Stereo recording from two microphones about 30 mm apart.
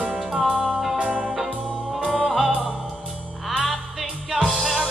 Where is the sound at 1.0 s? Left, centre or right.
Right.